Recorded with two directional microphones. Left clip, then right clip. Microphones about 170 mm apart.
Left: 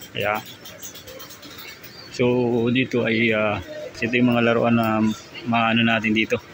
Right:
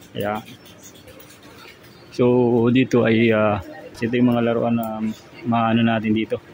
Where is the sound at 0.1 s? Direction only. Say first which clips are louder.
Left 2 dB; 15° right (ahead or behind).